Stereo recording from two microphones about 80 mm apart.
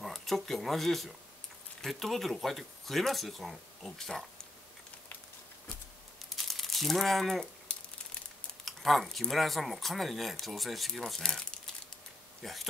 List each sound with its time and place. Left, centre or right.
0.0 s speech: centre
6.3 s crumpling: centre
8.6 s speech: centre